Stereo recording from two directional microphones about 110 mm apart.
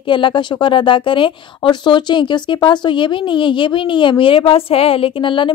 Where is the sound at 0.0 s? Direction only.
45° left (ahead or behind).